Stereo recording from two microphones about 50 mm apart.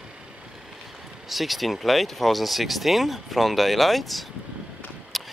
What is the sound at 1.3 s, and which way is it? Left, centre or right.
Speech, centre.